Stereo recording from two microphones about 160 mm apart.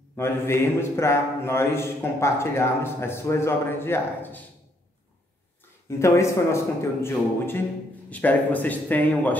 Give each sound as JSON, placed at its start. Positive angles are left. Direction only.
{"t": 0.1, "sound": "speech", "side_deg": 15}
{"t": 5.9, "sound": "speech", "side_deg": 20}